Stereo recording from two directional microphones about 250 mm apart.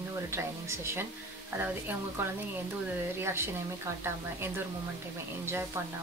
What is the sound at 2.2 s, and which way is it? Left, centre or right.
Speech, centre.